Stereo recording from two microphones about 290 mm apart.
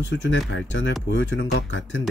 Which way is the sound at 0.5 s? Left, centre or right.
Left.